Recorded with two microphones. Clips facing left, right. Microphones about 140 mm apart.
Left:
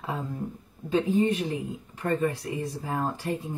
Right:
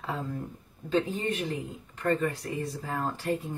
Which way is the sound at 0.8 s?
15° left (ahead or behind).